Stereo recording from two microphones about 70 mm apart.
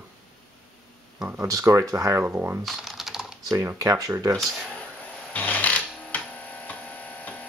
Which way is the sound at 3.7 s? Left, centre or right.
Right.